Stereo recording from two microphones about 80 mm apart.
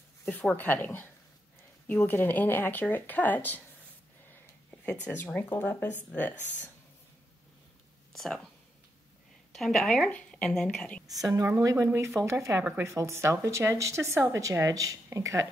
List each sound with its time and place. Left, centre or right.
0.2 s speech: centre
4.6 s speech: centre
8.1 s a sound: centre
9.5 s a woman's voice: centre
11.4 s a woman's voice: right